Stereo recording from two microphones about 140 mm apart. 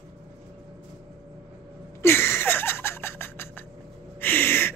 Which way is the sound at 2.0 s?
15° left (ahead or behind).